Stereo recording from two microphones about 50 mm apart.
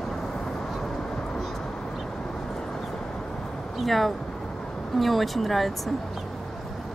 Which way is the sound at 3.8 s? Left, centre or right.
Centre.